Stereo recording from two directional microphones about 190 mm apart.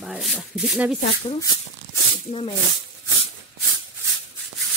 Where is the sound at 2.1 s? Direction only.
30° left (ahead or behind).